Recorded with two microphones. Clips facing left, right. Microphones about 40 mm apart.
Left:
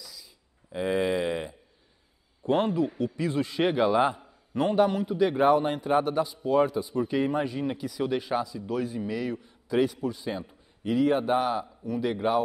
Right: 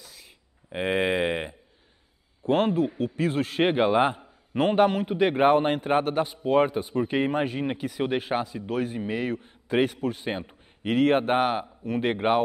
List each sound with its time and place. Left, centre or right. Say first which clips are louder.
0.0 s a sound: left 1 dB; right
2.5 s a man's voice: right 2 dB; right
3.6 s a man's voice: right 2 dB; right
4.6 s a man's voice: right 2 dB; right